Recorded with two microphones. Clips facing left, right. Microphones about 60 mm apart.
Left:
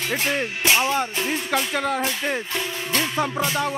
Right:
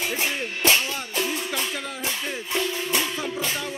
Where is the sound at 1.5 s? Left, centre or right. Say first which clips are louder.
Left 7 dB; left.